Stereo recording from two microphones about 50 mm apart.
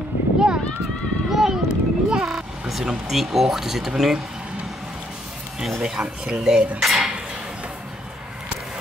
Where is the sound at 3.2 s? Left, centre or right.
Centre.